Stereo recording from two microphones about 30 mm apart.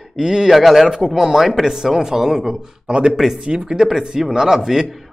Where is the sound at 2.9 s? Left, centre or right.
Right; by 4.8 s centre.